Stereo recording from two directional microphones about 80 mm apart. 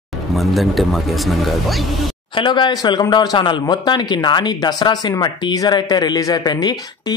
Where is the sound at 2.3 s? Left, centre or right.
Left.